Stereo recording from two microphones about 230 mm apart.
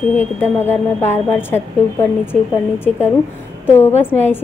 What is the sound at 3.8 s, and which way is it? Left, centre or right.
Speech, centre.